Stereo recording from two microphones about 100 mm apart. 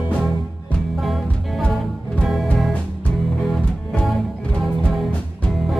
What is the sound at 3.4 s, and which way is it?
Music, 5° left (ahead or behind).